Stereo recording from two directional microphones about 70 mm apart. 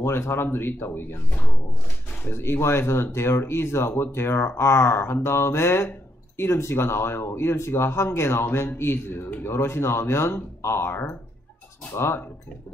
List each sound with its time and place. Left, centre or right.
0.0 s speech: left
2.2 s speech: left